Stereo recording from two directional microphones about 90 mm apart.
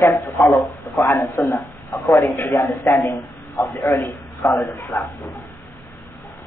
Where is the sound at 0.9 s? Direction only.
30° left (ahead or behind).